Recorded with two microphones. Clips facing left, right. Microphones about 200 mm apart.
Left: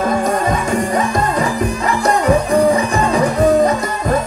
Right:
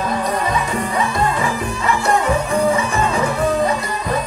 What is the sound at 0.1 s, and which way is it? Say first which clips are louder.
Music: left 4 dB; 45° left (ahead or behind).